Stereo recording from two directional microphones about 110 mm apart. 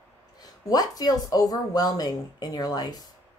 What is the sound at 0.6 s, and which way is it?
Speech, 35° left (ahead or behind).